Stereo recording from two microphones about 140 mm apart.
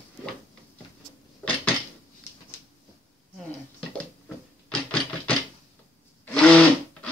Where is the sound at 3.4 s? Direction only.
5° left (ahead or behind).